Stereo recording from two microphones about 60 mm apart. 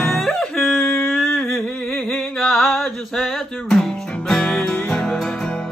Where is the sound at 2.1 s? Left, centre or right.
Centre.